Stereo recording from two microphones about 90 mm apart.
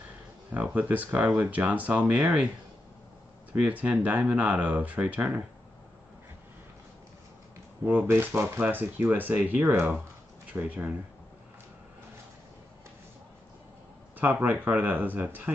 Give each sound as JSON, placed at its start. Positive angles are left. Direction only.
{"t": 0.5, "sound": "speech", "side_deg": -15}
{"t": 3.5, "sound": "speech", "side_deg": -15}
{"t": 7.8, "sound": "speech", "side_deg": -20}
{"t": 14.1, "sound": "speech", "side_deg": -20}